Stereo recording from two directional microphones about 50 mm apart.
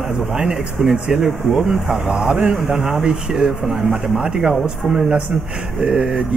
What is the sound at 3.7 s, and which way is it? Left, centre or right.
Speech, centre.